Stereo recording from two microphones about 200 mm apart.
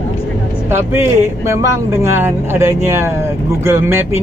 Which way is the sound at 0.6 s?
10° right (ahead or behind).